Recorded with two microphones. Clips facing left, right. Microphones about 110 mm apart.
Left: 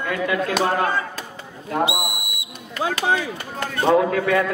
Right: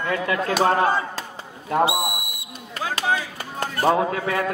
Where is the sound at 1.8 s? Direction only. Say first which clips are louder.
Right 2 dB; 20° left (ahead or behind).